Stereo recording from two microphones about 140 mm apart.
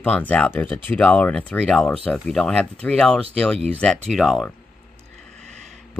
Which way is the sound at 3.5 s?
45° right (ahead or behind).